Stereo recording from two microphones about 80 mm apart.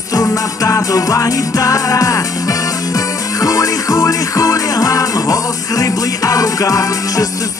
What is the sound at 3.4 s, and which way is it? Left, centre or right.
Music, left.